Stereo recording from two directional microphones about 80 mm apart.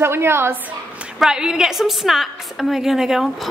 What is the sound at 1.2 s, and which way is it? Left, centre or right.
A woman's voice, centre.